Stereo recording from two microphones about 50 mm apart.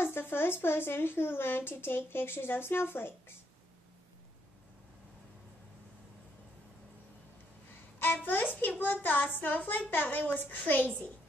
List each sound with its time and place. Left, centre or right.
0.0 s speech: left
8.0 s a child's voice: left